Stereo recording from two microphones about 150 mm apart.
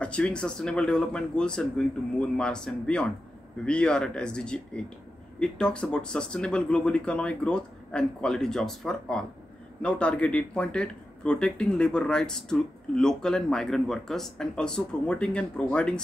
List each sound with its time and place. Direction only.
0.0 s speech: 5° left (ahead or behind)